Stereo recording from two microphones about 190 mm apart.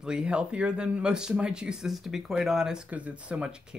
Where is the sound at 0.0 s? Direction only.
5° right (ahead or behind).